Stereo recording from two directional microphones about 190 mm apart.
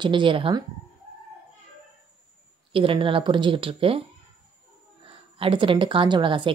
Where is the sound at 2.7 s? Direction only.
30° right (ahead or behind).